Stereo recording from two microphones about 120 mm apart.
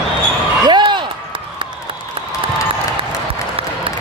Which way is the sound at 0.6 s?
40° right (ahead or behind).